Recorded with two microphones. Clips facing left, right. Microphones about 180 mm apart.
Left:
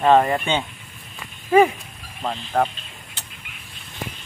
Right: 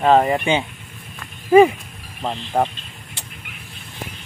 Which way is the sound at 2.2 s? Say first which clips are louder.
Right 1 dB; 20° right (ahead or behind).